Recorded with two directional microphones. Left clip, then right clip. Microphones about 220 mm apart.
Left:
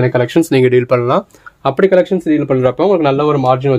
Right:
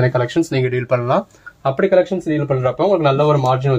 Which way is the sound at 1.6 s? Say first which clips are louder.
Left 3 dB; 45° left (ahead or behind).